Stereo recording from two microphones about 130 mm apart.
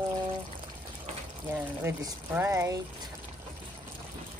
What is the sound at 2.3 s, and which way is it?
Speech, 20° right (ahead or behind).